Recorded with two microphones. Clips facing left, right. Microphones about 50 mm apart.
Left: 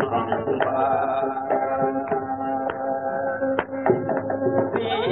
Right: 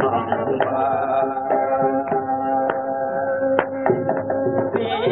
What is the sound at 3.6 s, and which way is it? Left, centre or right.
Music, centre.